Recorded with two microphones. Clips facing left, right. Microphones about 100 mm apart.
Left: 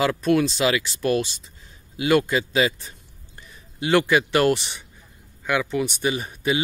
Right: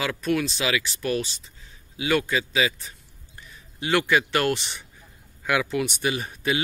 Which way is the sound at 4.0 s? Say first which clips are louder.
Left 3 dB; 20° left (ahead or behind).